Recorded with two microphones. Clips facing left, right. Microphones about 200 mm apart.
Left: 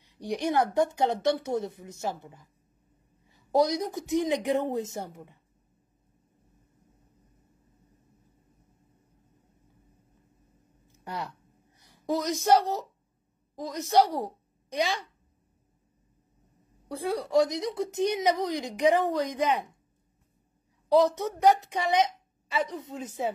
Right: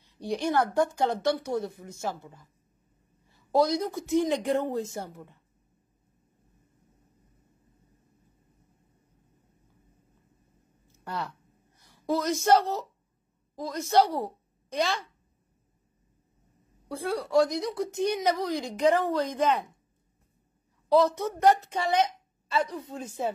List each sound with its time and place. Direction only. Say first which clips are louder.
0.0 s a woman's voice: even; 15° left (ahead or behind)
11.1 s a sound: right 1 dB; 15° left (ahead or behind)
12.4 s a woman's voice: even; 15° left (ahead or behind)
16.9 s a woman's voice: even; 15° left (ahead or behind)
20.9 s a woman's voice: even; 15° left (ahead or behind)